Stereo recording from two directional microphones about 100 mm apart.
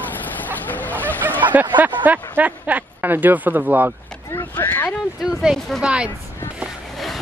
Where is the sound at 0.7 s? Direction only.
15° left (ahead or behind).